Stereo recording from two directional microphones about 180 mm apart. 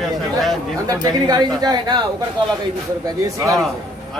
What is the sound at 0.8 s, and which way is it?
Speech, 20° right (ahead or behind).